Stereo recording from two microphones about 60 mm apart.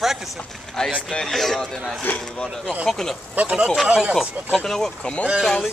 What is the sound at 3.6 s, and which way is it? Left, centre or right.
Speech, centre.